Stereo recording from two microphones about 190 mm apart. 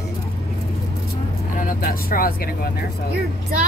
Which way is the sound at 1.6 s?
45° left (ahead or behind).